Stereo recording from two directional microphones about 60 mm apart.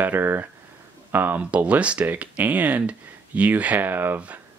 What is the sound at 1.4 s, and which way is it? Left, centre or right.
Speech, right.